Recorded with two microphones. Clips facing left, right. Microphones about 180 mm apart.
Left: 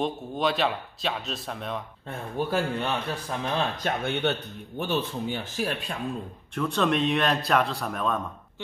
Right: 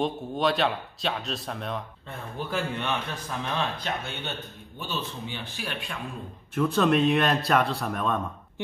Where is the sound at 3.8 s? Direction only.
60° left (ahead or behind); by 6.0 s 40° left (ahead or behind).